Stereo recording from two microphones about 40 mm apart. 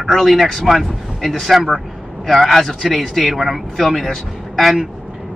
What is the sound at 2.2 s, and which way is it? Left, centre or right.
Speech, centre.